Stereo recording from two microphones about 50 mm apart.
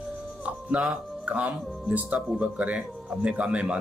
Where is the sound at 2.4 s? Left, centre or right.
Right.